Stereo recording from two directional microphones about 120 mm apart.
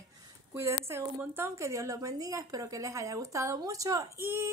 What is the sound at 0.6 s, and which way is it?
A woman's voice, 25° right (ahead or behind).